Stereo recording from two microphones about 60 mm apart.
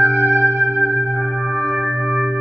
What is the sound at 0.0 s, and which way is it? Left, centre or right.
Singing bowl, right.